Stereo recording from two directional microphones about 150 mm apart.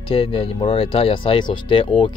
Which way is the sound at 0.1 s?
40° left (ahead or behind).